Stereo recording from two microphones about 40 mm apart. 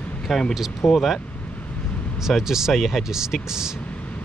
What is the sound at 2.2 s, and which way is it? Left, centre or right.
Speech, centre.